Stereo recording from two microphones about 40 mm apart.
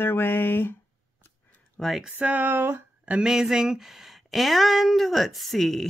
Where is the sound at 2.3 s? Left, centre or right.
Right.